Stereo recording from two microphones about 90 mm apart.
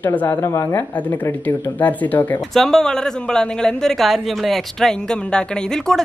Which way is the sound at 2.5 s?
5° left (ahead or behind).